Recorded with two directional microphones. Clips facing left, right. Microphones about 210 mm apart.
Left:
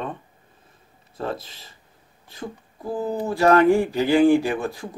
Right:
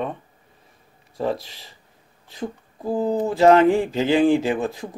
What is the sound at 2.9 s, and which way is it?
Speech, 20° right (ahead or behind).